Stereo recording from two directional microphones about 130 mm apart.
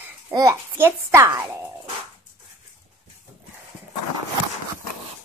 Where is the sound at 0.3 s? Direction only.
25° right (ahead or behind).